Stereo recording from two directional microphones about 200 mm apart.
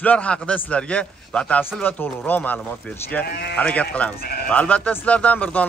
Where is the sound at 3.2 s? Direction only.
50° left (ahead or behind).